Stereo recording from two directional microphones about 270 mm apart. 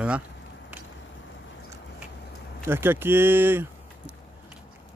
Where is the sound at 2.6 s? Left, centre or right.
Centre.